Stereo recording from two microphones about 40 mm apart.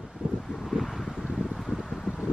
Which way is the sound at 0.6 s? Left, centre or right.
Centre.